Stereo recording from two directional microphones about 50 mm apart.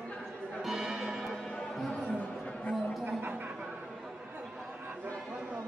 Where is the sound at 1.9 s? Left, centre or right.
Left.